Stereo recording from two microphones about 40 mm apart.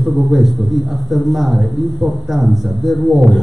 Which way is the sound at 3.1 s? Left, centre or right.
Centre.